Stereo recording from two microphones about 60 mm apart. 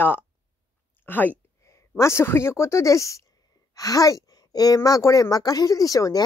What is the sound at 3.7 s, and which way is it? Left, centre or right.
A woman's voice, left.